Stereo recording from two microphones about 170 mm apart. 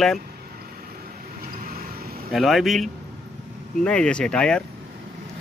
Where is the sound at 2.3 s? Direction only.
Centre (ahead or behind).